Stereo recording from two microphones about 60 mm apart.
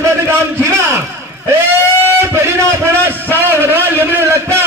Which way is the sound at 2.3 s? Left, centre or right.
Right.